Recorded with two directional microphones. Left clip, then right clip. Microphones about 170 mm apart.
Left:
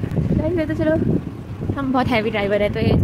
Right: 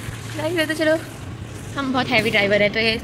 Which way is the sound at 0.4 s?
15° left (ahead or behind).